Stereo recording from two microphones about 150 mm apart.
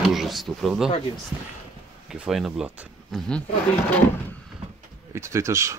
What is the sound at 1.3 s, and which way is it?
Speech, 20° right (ahead or behind).